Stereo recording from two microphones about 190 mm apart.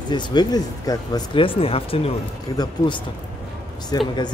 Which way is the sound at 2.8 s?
15° left (ahead or behind).